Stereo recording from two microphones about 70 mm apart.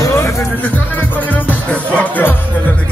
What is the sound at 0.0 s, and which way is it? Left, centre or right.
Music, left.